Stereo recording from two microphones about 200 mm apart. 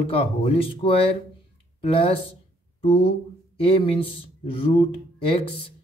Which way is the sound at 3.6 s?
25° left (ahead or behind).